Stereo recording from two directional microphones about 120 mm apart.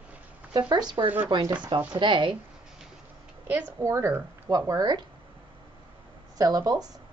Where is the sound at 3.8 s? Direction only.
20° right (ahead or behind).